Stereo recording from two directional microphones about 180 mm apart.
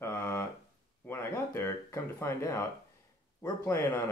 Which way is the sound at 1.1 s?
15° left (ahead or behind).